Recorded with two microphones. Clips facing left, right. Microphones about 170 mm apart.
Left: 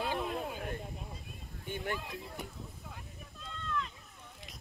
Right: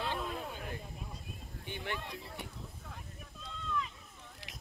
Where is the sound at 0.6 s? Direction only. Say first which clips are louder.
Left 4 dB; 50° left (ahead or behind).